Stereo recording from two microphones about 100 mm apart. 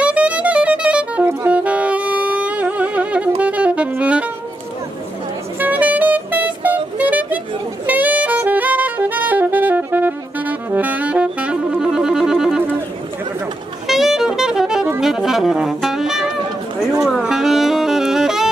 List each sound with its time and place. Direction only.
0.0 s music: 10° right (ahead or behind)
3.9 s saxophone: 15° right (ahead or behind)
5.6 s music: 15° right (ahead or behind)
7.8 s saxophone: 15° right (ahead or behind)
13.8 s saxophone: 5° right (ahead or behind)
17.0 s music: 5° right (ahead or behind)